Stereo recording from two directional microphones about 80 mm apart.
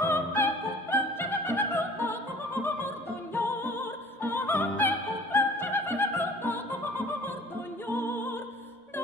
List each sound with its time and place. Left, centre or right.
0.0 s opera: left
3.3 s music: left